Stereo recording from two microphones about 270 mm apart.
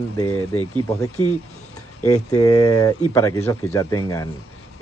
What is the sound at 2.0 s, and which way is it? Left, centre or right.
Speech, left.